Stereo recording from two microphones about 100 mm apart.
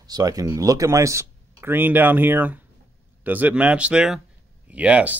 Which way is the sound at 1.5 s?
20° right (ahead or behind).